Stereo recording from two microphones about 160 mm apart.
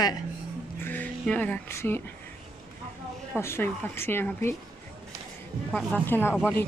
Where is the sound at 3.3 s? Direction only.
15° left (ahead or behind).